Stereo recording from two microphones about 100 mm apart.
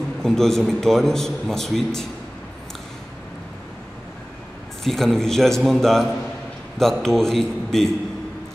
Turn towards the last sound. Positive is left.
turn(degrees=5)  # may be behind; listen again after turning